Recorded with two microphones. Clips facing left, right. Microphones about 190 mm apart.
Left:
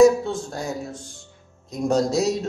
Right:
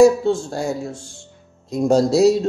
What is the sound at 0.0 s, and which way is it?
Speech, 25° right (ahead or behind).